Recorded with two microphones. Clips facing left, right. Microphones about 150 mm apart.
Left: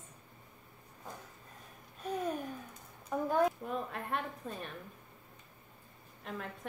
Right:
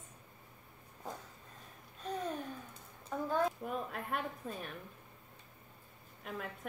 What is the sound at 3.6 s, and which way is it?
A woman's voice, centre (ahead or behind).